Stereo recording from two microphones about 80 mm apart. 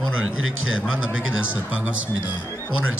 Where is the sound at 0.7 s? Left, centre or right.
Centre.